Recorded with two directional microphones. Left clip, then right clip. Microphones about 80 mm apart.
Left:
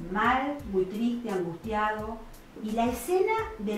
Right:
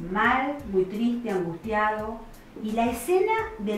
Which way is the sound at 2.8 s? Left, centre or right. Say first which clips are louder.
Right 3 dB; centre.